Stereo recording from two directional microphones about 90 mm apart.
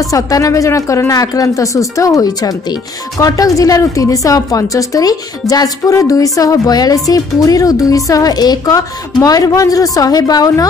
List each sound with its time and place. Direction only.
0.1 s a woman's voice: 40° left (ahead or behind)